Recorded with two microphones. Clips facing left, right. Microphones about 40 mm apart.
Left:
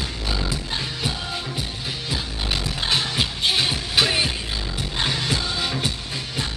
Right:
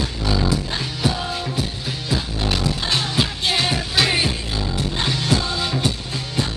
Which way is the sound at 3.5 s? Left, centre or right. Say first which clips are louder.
Right 3 dB; right.